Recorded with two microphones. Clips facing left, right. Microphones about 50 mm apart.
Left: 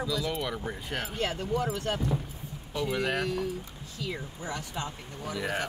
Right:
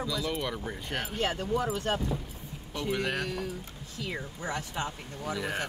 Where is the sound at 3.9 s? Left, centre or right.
Right.